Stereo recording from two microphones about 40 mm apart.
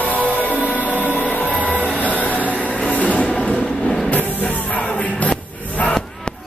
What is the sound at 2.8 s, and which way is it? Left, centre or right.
Music, left.